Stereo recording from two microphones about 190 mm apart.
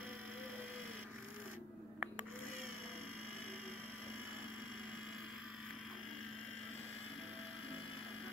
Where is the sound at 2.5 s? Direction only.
90° left.